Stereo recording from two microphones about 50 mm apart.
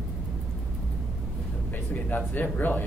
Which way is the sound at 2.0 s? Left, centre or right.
Left.